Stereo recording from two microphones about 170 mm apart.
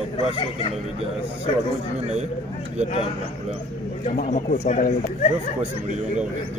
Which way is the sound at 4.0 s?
45° left (ahead or behind).